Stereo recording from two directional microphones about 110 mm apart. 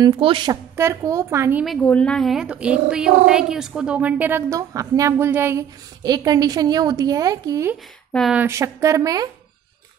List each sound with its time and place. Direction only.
0.0 s a woman's voice: 50° right (ahead or behind)
0.7 s speech: 25° right (ahead or behind)
1.8 s speech: 10° left (ahead or behind); by 5.1 s 30° right (ahead or behind)
5.1 s speech: 20° right (ahead or behind)
6.0 s a woman's voice: 35° right (ahead or behind)